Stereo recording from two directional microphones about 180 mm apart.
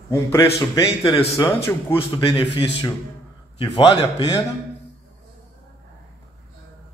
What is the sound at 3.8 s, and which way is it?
Speech, 30° left (ahead or behind).